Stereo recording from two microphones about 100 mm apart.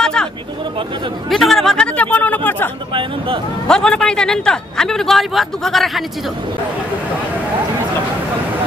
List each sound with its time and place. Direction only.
0.0 s a sound: 5° left (ahead or behind)
1.3 s chatter: centre (ahead or behind)
2.9 s speech: 60° right (ahead or behind)
3.6 s a man's voice: 5° left (ahead or behind)